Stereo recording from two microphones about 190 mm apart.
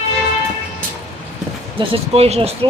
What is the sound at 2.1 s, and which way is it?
Speech, 30° right (ahead or behind).